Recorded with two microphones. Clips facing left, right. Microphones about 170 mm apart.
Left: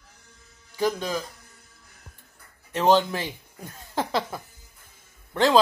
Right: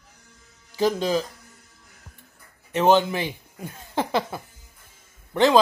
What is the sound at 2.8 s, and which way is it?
Speech, 10° right (ahead or behind).